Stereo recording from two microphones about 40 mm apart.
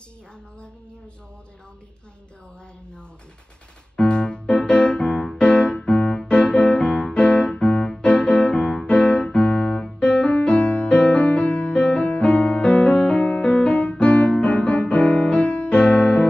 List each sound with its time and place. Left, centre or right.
3.9 s music: left